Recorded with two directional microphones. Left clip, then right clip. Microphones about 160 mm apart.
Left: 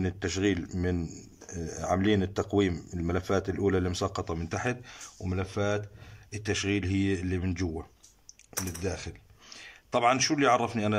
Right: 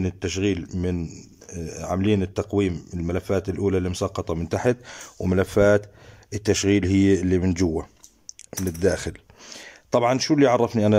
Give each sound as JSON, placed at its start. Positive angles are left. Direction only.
{"t": 0.0, "sound": "speech", "side_deg": -10}
{"t": 4.8, "sound": "speech", "side_deg": -50}
{"t": 6.3, "sound": "speech", "side_deg": -35}
{"t": 8.3, "sound": "speech", "side_deg": -50}